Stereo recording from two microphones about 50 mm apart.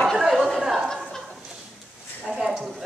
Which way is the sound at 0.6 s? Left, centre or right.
Centre.